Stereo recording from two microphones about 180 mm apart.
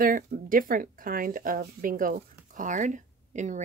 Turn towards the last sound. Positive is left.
turn(degrees=-40)  # may be behind; listen again after turning